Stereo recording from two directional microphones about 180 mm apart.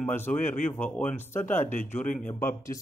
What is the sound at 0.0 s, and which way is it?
Speech, 10° left (ahead or behind).